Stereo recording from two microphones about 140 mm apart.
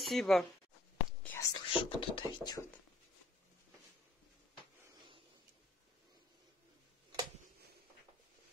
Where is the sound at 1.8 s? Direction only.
35° left (ahead or behind).